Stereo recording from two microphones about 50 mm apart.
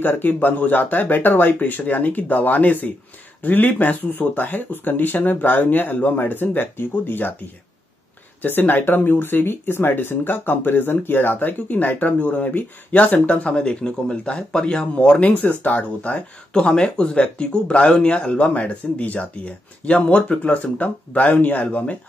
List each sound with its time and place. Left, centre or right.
0.0 s speech: left
8.4 s speech: left
16.5 s speech: centre